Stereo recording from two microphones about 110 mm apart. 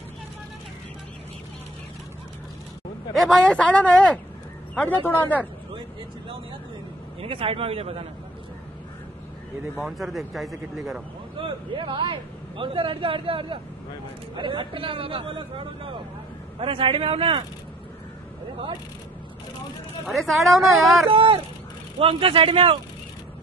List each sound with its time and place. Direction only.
3.2 s a man's voice: 5° left (ahead or behind)
7.2 s speech: 60° right (ahead or behind)
9.8 s speech: centre (ahead or behind)
11.3 s a man's voice: 50° right (ahead or behind)
20.1 s speech: centre (ahead or behind)
21.1 s a man's voice: 50° right (ahead or behind)